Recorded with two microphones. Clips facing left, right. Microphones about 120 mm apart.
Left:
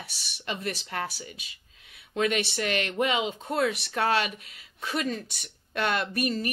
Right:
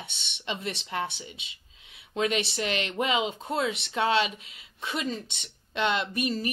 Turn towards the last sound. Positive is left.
turn(degrees=-25)  # may be behind; listen again after turning